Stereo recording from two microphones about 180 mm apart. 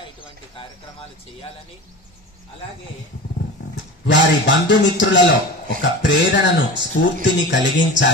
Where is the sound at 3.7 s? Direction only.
85° left.